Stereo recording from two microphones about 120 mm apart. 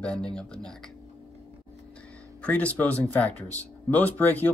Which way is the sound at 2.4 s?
10° left (ahead or behind).